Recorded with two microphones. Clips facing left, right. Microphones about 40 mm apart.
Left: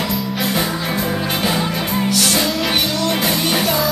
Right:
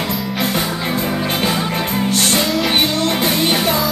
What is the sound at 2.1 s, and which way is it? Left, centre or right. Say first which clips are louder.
Music: right 2 dB; right.